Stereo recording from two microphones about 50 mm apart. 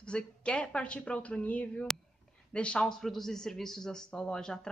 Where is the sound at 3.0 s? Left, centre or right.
Centre.